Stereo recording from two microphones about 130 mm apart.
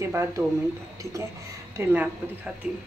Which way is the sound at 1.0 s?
25° right (ahead or behind).